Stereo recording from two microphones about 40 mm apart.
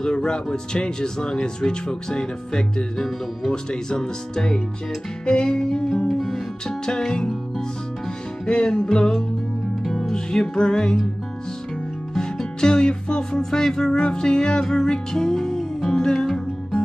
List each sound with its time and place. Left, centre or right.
0.0 s speech: centre
5.2 s music: left
6.0 s music: centre
6.9 s music: centre
8.5 s music: left
12.2 s music: centre